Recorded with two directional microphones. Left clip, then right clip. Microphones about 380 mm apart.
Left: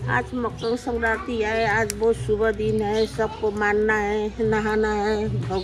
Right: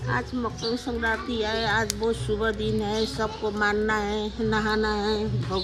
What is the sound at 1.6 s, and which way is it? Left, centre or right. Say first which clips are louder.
Speech: left 5 dB; centre.